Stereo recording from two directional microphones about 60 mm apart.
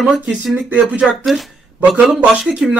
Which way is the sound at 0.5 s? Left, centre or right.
Centre.